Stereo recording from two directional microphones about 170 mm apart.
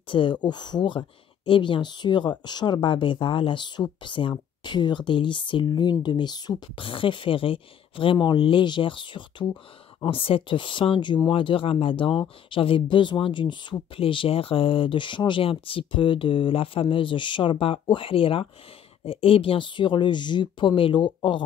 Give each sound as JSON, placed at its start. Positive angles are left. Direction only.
{"t": 0.1, "sound": "speech", "side_deg": 30}